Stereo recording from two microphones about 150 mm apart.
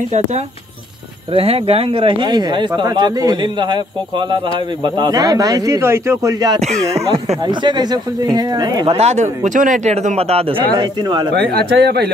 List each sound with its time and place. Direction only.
1.3 s speech: 40° right (ahead or behind); by 6.6 s 25° right (ahead or behind)
6.6 s speech: 45° right (ahead or behind)
7.4 s speech: 30° right (ahead or behind)
8.8 s speech: 45° right (ahead or behind)
11.3 s speech: 90° right